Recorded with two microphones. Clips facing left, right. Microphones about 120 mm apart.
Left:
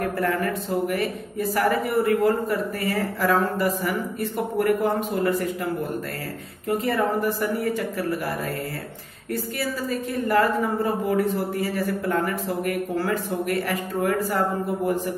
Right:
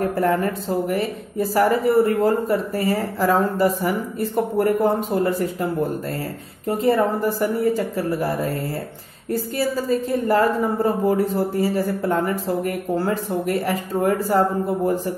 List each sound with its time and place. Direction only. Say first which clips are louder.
0.0 s speech: right 4 dB; 30° right (ahead or behind)
6.8 s a woman's voice: right 6 dB; 30° right (ahead or behind)